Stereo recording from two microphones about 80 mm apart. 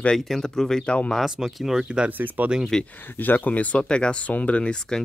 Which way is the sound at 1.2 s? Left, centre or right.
Centre.